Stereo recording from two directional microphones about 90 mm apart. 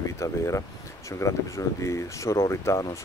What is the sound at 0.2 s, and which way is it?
Speech, 35° left (ahead or behind).